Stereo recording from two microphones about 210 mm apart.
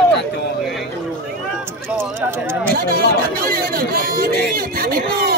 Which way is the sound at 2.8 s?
45° right (ahead or behind).